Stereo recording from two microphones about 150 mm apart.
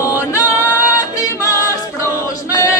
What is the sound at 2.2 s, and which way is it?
Choir, 20° left (ahead or behind).